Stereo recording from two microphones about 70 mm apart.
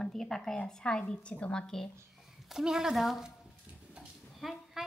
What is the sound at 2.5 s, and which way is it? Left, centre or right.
Speech, centre.